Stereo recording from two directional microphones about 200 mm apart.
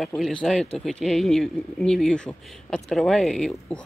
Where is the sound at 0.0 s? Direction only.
Centre (ahead or behind).